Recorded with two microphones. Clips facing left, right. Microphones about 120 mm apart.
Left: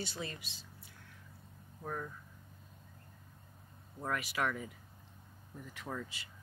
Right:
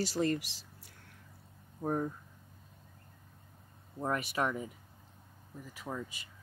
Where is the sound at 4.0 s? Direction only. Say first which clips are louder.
Right 3 dB; 25° right (ahead or behind).